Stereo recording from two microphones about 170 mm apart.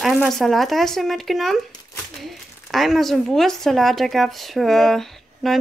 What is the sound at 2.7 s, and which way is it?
Speech, centre (ahead or behind).